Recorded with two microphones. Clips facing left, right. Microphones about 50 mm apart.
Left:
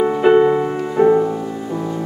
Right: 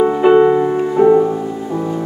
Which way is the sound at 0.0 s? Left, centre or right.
Centre.